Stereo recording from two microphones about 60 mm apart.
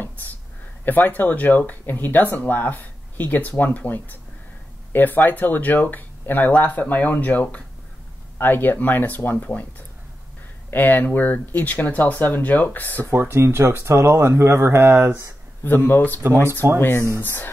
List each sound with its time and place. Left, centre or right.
0.8 s speech: left
10.7 s speech: left
13.1 s speech: right
15.6 s speech: left
16.6 s speech: right
17.2 s speech: left